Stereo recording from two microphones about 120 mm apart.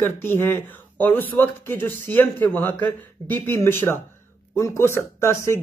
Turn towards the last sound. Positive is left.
turn(degrees=20)  # may be behind; listen again after turning